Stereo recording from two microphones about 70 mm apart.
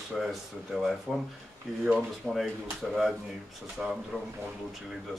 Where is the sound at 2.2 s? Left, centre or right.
Centre.